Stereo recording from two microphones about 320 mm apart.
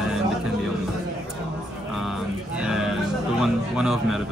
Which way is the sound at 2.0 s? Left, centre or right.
Centre.